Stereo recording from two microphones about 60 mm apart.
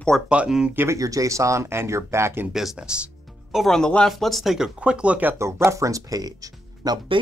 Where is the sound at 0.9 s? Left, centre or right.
Right.